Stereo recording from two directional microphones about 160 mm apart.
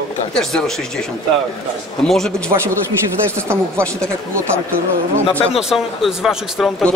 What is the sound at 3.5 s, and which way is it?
Speech, 15° right (ahead or behind).